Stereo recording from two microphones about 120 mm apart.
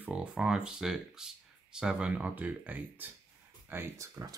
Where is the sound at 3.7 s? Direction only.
25° right (ahead or behind).